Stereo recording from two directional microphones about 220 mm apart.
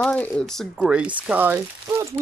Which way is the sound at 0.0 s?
5° left (ahead or behind).